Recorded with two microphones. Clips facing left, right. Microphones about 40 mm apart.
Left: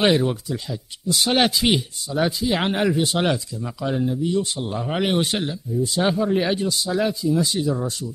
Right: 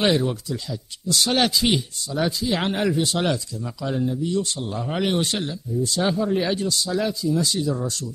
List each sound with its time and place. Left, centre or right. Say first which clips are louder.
0.0 s speech: left 2 dB; centre